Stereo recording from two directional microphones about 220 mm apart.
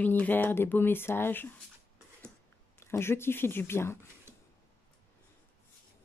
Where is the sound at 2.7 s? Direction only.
10° left (ahead or behind).